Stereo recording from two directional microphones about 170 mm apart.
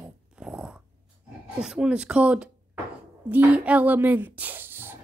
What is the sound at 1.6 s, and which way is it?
Speech, 5° right (ahead or behind).